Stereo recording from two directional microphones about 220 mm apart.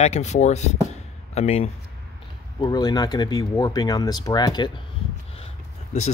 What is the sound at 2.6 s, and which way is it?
Speech, 20° left (ahead or behind).